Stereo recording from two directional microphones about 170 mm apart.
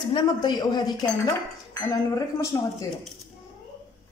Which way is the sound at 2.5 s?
20° left (ahead or behind).